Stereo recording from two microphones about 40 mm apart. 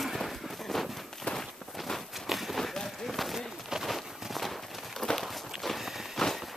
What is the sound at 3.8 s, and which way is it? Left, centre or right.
Walk, centre.